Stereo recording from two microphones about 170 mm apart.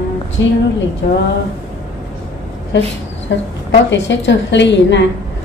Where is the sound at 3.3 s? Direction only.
90° left.